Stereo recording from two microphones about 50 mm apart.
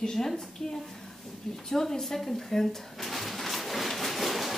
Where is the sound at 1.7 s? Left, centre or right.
Centre.